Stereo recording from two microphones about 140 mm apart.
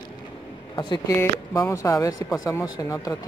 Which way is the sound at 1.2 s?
20° left (ahead or behind).